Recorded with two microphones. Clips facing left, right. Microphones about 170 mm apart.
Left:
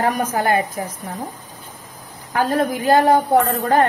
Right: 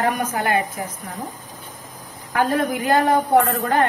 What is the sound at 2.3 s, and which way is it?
A woman's voice, 35° left (ahead or behind).